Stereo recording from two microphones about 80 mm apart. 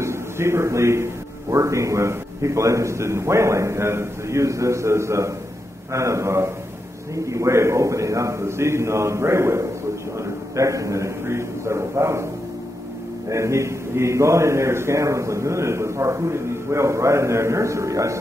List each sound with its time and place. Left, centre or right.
0.0 s a man's voice: right
13.3 s a man's voice: right